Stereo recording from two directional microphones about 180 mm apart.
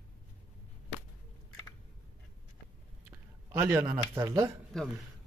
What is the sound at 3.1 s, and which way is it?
Speech, 10° right (ahead or behind).